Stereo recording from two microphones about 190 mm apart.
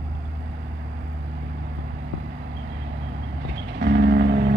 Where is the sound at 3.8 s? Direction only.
55° right (ahead or behind).